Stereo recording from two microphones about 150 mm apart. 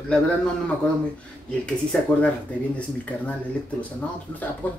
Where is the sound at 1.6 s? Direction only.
5° left (ahead or behind).